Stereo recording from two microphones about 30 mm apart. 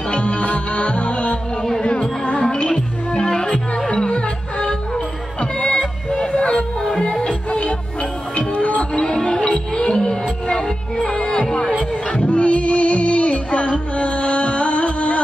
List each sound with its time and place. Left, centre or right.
0.1 s music: left
6.8 s music: left
8.4 s music: left
9.9 s music: left
11.0 s music: left